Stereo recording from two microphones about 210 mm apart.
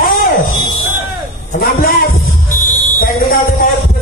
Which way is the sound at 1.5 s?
40° left (ahead or behind).